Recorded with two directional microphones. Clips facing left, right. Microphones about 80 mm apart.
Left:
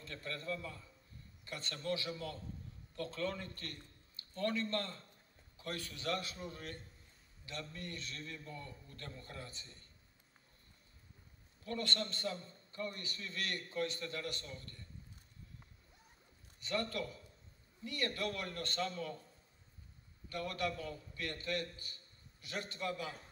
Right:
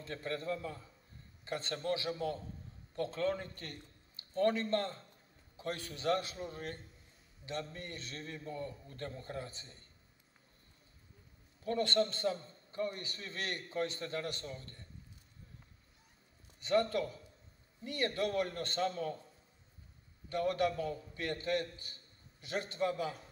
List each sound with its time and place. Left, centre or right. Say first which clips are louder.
0.0 s a man's voice: right 6 dB; right
11.6 s a man's voice: right 7 dB; right
16.5 s a man's voice: right 7 dB; right
20.2 s a man's voice: right 7 dB; right